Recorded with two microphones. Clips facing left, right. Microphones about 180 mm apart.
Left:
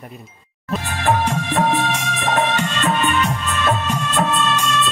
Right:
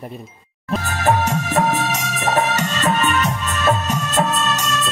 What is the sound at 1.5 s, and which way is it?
Music, 40° right (ahead or behind).